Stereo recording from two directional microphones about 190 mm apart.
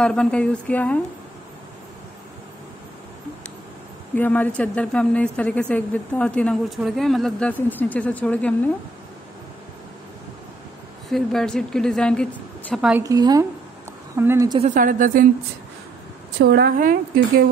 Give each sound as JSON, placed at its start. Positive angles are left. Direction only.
{"t": 0.0, "sound": "speech", "side_deg": 5}
{"t": 4.1, "sound": "speech", "side_deg": 10}
{"t": 11.1, "sound": "a woman's voice", "side_deg": 0}
{"t": 13.0, "sound": "speech", "side_deg": -20}
{"t": 14.6, "sound": "a woman's voice", "side_deg": -45}
{"t": 16.3, "sound": "a woman's voice", "side_deg": -60}